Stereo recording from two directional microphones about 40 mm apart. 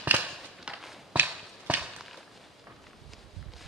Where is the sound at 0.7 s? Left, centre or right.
Right.